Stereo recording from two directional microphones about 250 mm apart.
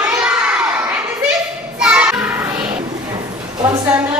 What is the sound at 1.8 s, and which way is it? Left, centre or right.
Music, centre.